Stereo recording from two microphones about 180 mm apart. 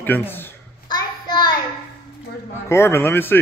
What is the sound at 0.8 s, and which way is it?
Child singing, 25° left (ahead or behind).